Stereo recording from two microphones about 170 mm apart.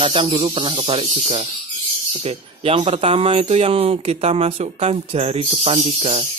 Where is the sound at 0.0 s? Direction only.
30° right (ahead or behind).